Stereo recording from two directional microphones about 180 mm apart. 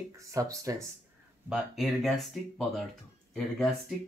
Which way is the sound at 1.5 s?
Centre (ahead or behind).